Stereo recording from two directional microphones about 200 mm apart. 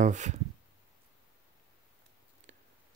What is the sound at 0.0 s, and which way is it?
Speech, 35° right (ahead or behind).